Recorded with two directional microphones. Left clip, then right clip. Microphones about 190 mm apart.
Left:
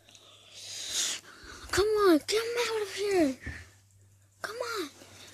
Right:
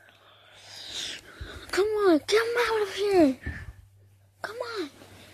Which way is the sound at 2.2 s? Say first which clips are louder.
Right 6 dB; 15° right (ahead or behind).